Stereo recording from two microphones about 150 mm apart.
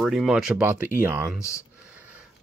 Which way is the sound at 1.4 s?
20° left (ahead or behind).